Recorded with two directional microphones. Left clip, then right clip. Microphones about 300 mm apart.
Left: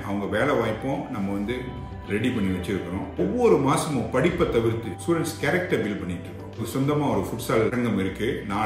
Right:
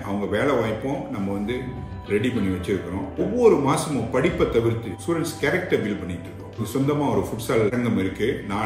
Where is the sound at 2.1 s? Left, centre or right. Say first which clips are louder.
Right 3 dB; centre.